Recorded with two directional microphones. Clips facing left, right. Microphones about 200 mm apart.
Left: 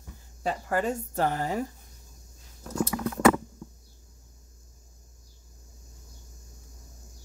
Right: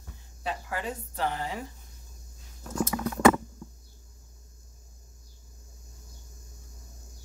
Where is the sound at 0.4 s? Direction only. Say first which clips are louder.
Left 6 dB; 45° left (ahead or behind).